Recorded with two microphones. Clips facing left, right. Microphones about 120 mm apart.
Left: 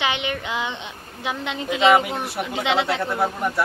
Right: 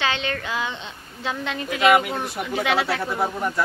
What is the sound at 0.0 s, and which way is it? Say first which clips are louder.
A woman's voice: left 1 dB; 15° left (ahead or behind).